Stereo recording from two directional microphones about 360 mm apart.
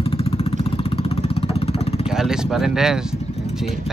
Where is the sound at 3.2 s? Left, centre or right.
Centre.